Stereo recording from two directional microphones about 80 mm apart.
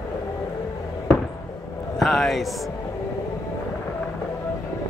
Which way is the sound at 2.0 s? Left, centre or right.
Centre.